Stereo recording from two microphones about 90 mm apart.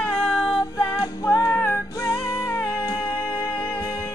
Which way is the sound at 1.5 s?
20° left (ahead or behind).